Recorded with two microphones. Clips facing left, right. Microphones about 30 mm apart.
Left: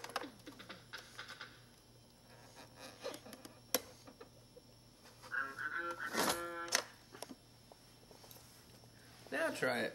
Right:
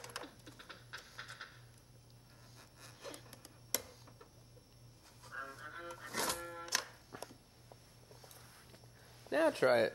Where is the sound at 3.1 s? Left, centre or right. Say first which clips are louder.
Left 3 dB; centre.